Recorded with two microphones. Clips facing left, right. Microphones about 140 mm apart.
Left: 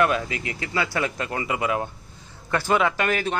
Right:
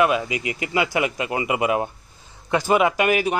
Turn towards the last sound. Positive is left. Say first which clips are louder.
# right 4 dB
turn(degrees=-10)  # may be behind; listen again after turning